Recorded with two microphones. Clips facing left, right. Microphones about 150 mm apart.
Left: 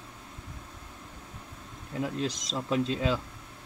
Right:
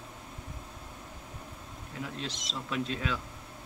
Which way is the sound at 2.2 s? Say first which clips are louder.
Left 6 dB; 40° left (ahead or behind).